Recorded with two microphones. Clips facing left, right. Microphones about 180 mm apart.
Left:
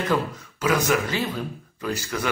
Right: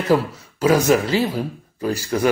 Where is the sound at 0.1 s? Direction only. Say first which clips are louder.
Right 6 dB; 30° right (ahead or behind).